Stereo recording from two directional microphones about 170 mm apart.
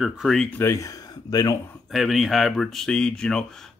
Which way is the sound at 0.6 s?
20° left (ahead or behind).